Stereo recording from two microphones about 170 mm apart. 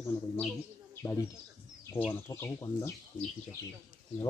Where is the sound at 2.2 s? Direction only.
15° left (ahead or behind).